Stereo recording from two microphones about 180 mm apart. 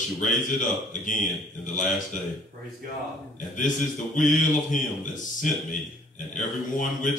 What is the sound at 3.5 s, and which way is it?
A man's voice, 45° left (ahead or behind).